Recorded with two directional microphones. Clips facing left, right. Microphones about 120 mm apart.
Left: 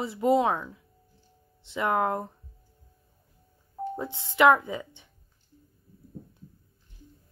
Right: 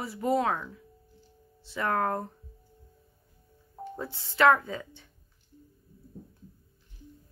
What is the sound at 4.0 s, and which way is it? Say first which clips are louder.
A woman's voice: left 2 dB; 20° left (ahead or behind).